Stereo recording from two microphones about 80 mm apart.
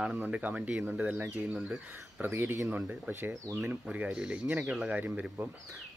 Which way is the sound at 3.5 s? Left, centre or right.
Right.